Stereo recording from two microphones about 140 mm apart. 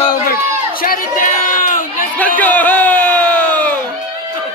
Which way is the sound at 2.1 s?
10° left (ahead or behind).